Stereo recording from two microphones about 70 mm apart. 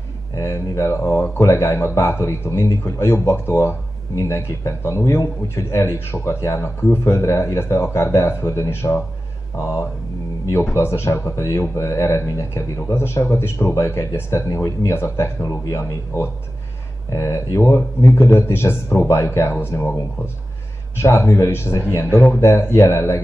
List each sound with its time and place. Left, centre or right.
0.4 s speech: left
17.7 s speech: left
21.0 s speech: left